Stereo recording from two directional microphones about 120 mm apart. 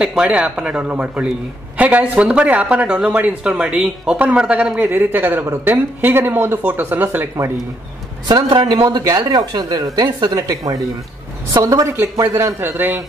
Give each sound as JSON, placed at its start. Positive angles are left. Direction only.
{"t": 0.0, "sound": "speech", "side_deg": -5}
{"t": 8.3, "sound": "speech", "side_deg": -40}